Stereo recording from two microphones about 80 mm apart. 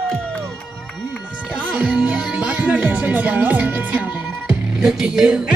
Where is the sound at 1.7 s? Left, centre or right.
Centre.